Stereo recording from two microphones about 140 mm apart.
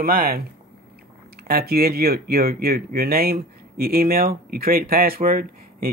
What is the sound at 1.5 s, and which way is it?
Speech, 90° right.